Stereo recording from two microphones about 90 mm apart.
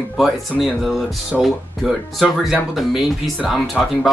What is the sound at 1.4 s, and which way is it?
Speech, centre (ahead or behind).